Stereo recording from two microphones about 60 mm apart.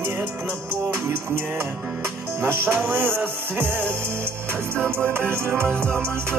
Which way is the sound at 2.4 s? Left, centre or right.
Right.